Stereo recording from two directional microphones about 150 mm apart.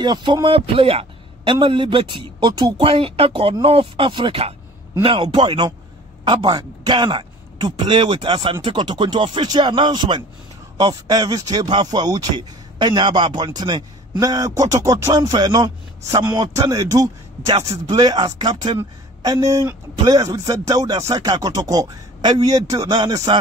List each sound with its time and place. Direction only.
0.0 s a man's voice: 30° right (ahead or behind)